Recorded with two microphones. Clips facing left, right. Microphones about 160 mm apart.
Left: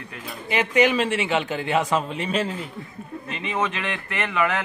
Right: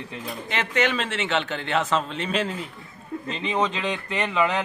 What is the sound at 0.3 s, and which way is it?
Speech, 10° left (ahead or behind).